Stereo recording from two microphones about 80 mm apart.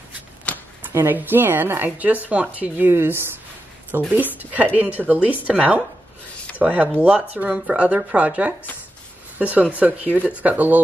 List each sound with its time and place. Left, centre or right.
0.5 s a sound: centre
0.9 s speech: right
4.4 s speech: centre